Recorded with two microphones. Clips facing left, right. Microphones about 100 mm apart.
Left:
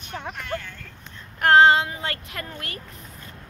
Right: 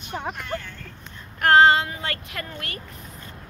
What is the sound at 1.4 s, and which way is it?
Child singing, 20° left (ahead or behind).